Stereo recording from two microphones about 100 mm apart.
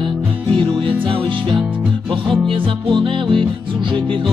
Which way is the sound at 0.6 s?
55° right (ahead or behind).